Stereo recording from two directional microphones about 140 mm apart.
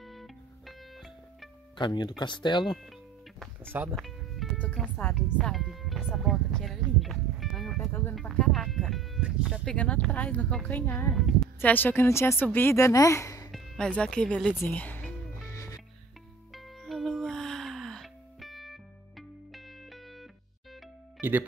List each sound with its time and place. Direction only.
0.0 s music: centre (ahead or behind)
1.8 s speech: 35° left (ahead or behind)
3.9 s music: centre (ahead or behind)
4.6 s speech: 10° left (ahead or behind)
5.1 s music: centre (ahead or behind)
8.1 s speech: centre (ahead or behind)
9.7 s speech: 10° left (ahead or behind)
11.1 s speech: centre (ahead or behind)
11.6 s speech: 15° left (ahead or behind)
13.5 s speech: centre (ahead or behind)
15.5 s music: 25° left (ahead or behind)
16.5 s music: centre (ahead or behind)
21.2 s speech: 15° right (ahead or behind)